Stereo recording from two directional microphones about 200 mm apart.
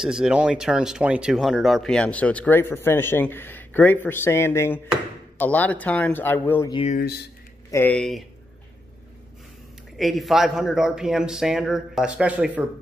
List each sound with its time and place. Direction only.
0.0 s speech: 5° right (ahead or behind)
6.7 s speech: 30° left (ahead or behind)
7.7 s a man's voice: 5° left (ahead or behind)
9.9 s a man's voice: centre (ahead or behind)